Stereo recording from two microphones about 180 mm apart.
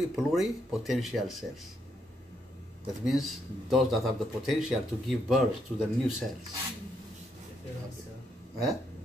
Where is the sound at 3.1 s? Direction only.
Centre (ahead or behind).